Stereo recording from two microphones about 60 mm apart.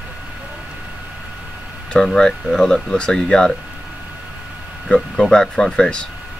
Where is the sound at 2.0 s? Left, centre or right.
Centre.